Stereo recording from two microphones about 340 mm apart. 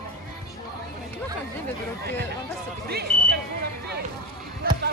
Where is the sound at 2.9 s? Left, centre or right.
Right.